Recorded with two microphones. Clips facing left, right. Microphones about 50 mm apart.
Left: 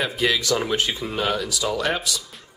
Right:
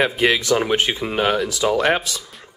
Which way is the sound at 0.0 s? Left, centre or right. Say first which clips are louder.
Right 5 dB; right.